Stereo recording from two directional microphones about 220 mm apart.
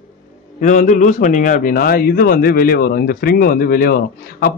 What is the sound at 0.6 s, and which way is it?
A man's voice, 35° left (ahead or behind).